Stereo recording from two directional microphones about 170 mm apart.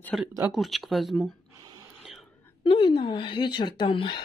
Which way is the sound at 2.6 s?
30° left (ahead or behind).